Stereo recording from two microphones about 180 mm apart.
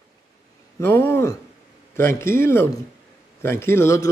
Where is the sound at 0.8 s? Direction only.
10° left (ahead or behind).